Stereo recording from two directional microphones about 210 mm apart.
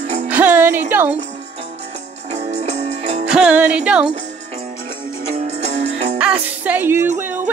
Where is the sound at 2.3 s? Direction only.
30° right (ahead or behind).